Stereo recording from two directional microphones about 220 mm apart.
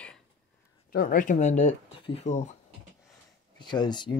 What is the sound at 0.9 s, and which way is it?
Speech, 40° left (ahead or behind).